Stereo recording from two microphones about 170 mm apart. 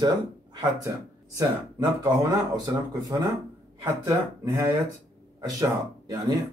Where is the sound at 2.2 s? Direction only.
25° right (ahead or behind).